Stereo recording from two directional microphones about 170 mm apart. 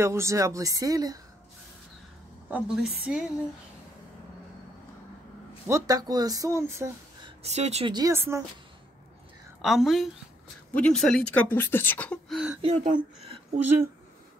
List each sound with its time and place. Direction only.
0.0 s speech: 15° right (ahead or behind)
2.5 s a woman's voice: 5° right (ahead or behind)
5.7 s speech: 20° right (ahead or behind)
7.2 s speech: 40° right (ahead or behind)
7.9 s speech: 20° right (ahead or behind)
9.6 s a woman's voice: centre (ahead or behind)
12.6 s speech: 45° right (ahead or behind)